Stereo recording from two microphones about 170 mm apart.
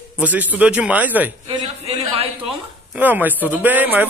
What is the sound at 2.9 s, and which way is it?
A man's voice, 10° right (ahead or behind).